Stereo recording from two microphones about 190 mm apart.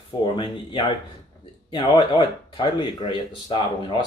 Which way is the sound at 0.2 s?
25° left (ahead or behind).